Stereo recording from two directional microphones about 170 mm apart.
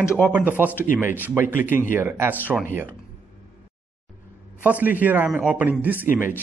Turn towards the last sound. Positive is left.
turn(degrees=-10)  # may be behind; listen again after turning